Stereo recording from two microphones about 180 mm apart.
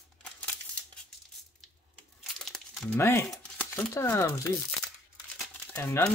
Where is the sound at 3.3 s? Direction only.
10° left (ahead or behind).